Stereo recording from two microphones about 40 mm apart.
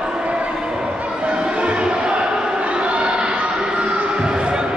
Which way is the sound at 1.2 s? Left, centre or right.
Right.